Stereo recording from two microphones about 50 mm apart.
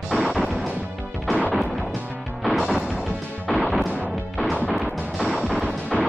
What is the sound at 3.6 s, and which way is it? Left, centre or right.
Smash, centre.